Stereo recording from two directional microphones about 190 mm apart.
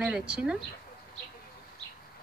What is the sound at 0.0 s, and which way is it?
Speech, 5° right (ahead or behind).